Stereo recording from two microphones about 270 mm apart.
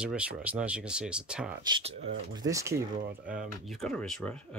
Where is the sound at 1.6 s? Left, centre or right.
Right; by 4.4 s centre.